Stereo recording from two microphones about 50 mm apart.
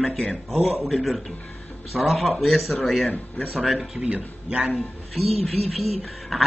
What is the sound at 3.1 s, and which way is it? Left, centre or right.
Speech, left.